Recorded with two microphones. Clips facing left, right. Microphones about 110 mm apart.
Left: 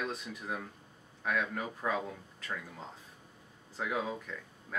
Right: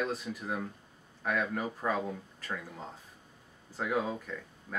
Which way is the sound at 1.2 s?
Centre (ahead or behind).